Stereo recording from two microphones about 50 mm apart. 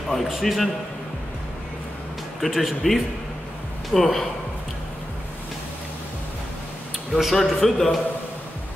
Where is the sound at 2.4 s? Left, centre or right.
Centre.